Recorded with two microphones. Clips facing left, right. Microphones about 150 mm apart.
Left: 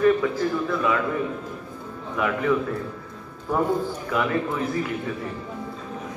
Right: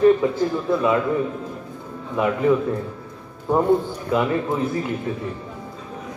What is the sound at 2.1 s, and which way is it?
Speech, 25° right (ahead or behind).